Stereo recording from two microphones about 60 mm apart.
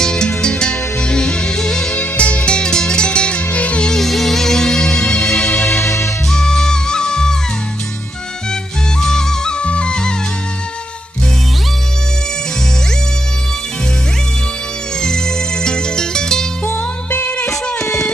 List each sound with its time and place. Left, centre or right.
0.0 s music: centre
3.9 s music: centre; by 5.9 s left
6.3 s music: centre
9.0 s music: centre
15.0 s music: centre
16.6 s music: left